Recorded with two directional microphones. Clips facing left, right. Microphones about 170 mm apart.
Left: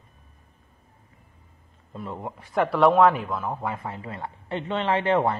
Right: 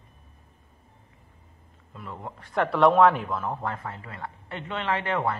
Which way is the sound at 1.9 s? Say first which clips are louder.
Left 5 dB; 30° left (ahead or behind).